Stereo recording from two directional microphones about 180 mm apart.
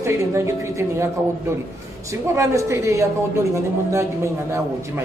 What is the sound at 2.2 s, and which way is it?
A man's voice, 15° right (ahead or behind).